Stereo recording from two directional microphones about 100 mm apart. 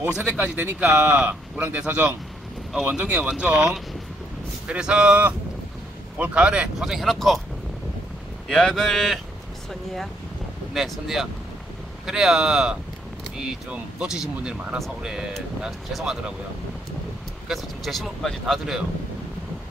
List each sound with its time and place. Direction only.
0.2 s speech: 15° right (ahead or behind); by 7.4 s centre (ahead or behind)
8.5 s speech: 5° left (ahead or behind)
10.7 s speech: centre (ahead or behind)
17.5 s speech: centre (ahead or behind)